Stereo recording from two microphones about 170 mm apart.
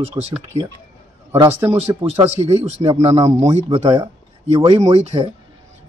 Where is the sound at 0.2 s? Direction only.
30° right (ahead or behind).